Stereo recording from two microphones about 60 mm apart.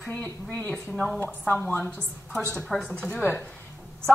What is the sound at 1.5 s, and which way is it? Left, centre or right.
Speech, left.